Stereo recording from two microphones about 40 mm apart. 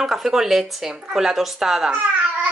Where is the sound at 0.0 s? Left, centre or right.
Centre.